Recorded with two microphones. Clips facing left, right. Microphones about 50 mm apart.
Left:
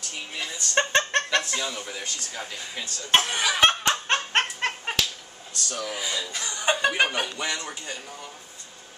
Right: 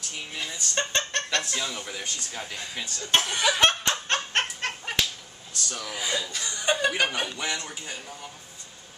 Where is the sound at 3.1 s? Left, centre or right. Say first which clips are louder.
Left 1 dB; centre.